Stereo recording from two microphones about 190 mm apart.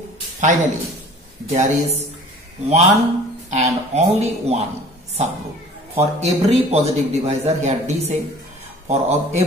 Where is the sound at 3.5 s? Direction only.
35° right (ahead or behind).